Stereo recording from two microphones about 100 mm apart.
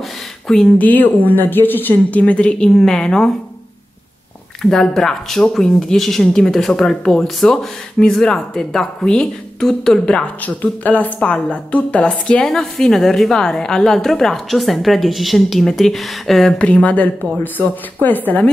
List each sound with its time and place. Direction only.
0.7 s speech: 15° left (ahead or behind)
4.6 s speech: 5° left (ahead or behind)